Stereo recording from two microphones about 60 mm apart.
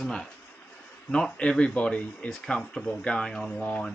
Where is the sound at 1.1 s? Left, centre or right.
Centre.